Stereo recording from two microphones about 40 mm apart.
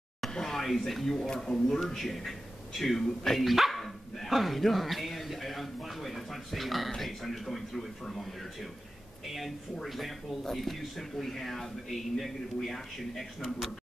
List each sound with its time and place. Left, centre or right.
0.3 s speech: centre
1.1 s speech: centre
2.0 s speech: centre